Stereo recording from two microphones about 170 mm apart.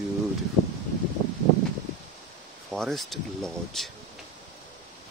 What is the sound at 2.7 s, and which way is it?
Speech, centre (ahead or behind).